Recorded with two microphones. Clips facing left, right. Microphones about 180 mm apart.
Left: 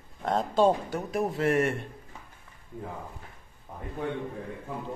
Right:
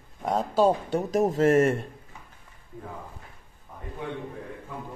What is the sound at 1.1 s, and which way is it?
Speech, 40° right (ahead or behind).